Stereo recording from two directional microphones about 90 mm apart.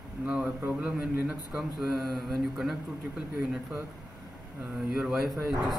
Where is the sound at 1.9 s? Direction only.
Centre (ahead or behind).